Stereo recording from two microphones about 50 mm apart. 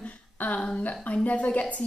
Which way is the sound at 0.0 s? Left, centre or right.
Left.